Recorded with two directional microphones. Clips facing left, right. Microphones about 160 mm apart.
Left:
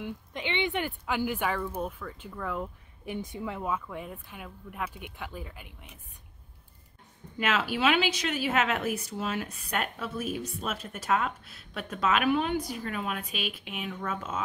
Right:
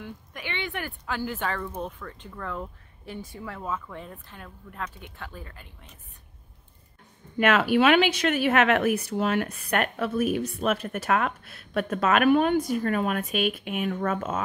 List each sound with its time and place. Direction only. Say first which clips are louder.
0.0 s speech: left 3 dB; 20° left (ahead or behind); by 2.7 s 5° left (ahead or behind)
3.1 s speech: left 3 dB; 15° left (ahead or behind)
7.3 s speech: right 8 dB; 60° right (ahead or behind)